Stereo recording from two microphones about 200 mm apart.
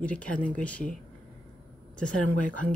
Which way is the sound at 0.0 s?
5° left (ahead or behind).